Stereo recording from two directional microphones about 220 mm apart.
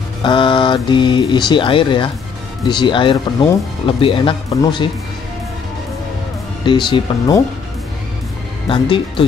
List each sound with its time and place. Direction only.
0.2 s speech: 20° left (ahead or behind)
6.6 s speech: 20° left (ahead or behind)
8.6 s speech: 25° left (ahead or behind)